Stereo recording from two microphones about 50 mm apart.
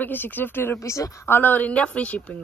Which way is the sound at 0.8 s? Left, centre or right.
Left.